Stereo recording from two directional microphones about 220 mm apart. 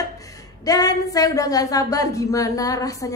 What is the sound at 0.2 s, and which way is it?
A woman's voice, 15° left (ahead or behind).